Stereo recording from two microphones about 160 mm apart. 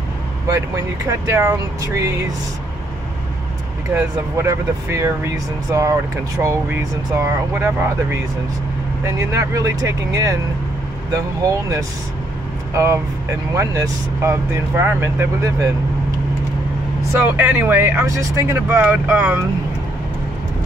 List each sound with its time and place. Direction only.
1.0 s speech: 20° right (ahead or behind)
3.9 s speech: 15° right (ahead or behind)
17.4 s speech: 10° right (ahead or behind)